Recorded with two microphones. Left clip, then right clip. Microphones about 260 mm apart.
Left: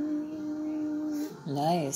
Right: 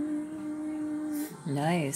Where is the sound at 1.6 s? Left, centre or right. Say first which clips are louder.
Left 2 dB; right.